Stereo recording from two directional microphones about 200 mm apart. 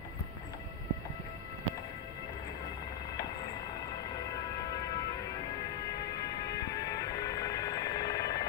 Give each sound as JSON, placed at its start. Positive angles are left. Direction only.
{"t": 7.3, "sound": "music", "side_deg": 20}